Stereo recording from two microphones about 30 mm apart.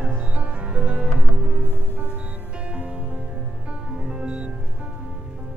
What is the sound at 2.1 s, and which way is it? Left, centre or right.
Music, right.